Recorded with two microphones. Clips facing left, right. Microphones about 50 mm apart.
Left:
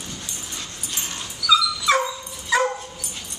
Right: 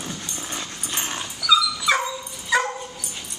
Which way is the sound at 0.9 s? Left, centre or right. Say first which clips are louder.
Right 4 dB; right.